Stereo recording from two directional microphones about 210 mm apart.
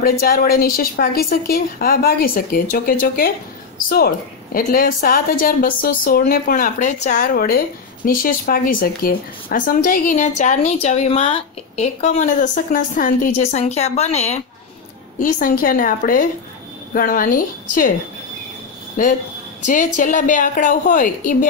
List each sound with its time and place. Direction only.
0.0 s a woman's voice: 45° left (ahead or behind)
4.6 s speech: 40° left (ahead or behind)
19.6 s speech: 40° left (ahead or behind)